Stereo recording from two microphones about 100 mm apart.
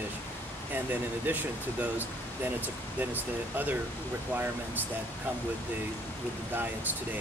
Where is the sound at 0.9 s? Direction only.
20° right (ahead or behind).